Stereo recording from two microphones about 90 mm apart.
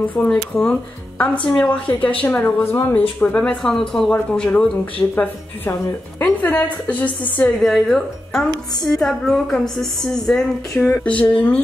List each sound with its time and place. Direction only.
0.1 s a woman's voice: 15° left (ahead or behind)
3.2 s a woman's voice: 10° left (ahead or behind)
5.1 s a woman's voice: 25° left (ahead or behind)
6.4 s a woman's voice: 15° left (ahead or behind)
7.6 s a woman's voice: 5° left (ahead or behind)
11.2 s a woman's voice: 15° left (ahead or behind)